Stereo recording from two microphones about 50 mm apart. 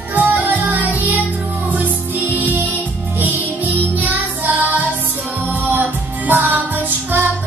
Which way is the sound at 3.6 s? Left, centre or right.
Right.